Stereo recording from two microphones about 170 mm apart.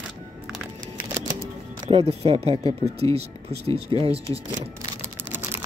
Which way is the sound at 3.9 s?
30° right (ahead or behind).